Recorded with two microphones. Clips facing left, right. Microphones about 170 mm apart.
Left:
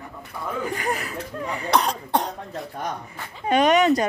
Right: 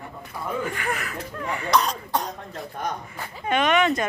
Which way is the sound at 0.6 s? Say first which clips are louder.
Left 2 dB; 35° left (ahead or behind).